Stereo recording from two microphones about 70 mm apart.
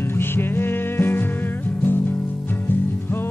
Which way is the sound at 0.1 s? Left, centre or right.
Left.